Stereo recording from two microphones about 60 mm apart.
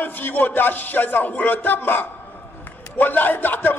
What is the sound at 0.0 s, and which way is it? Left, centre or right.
A man's voice, left.